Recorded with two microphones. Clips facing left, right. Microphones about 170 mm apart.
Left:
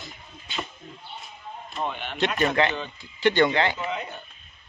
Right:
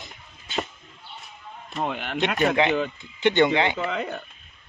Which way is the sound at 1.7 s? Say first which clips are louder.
Right 3 dB; 85° right.